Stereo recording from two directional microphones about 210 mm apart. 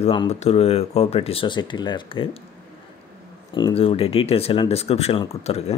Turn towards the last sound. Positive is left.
turn(degrees=25)  # may be behind; listen again after turning